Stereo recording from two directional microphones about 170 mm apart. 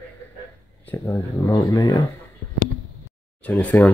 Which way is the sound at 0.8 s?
15° left (ahead or behind).